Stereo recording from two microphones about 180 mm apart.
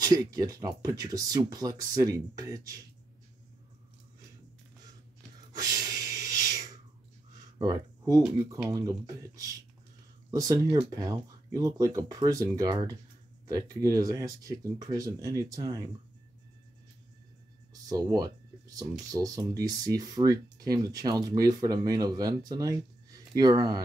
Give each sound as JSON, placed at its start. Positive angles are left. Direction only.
{"t": 0.0, "sound": "speech", "side_deg": -20}
{"t": 5.6, "sound": "a sound", "side_deg": -20}
{"t": 7.5, "sound": "speech", "side_deg": -20}
{"t": 17.8, "sound": "speech", "side_deg": -20}